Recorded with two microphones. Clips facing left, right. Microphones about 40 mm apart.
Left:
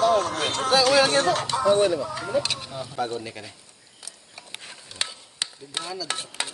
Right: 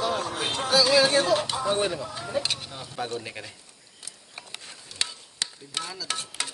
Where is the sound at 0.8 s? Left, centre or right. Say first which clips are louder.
Even; left.